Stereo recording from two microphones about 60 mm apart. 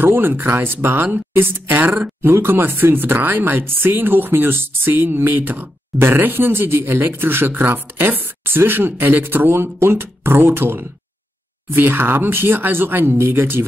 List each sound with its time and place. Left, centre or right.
0.0 s speech: right